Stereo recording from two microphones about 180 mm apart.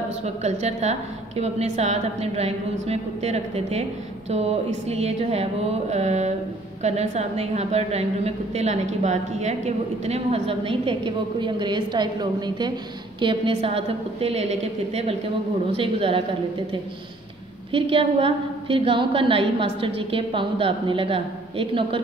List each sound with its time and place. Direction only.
0.2 s a woman's voice: 35° right (ahead or behind)
17.7 s a woman's voice: 30° right (ahead or behind)